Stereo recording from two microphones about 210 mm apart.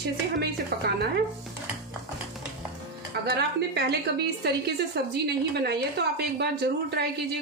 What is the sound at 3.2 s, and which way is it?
A woman's voice, 50° right (ahead or behind).